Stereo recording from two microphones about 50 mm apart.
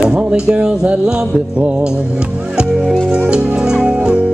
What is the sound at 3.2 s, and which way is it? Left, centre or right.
Music, centre.